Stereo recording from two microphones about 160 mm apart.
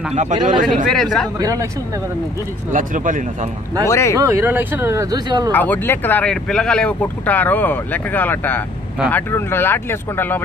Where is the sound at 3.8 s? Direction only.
15° left (ahead or behind).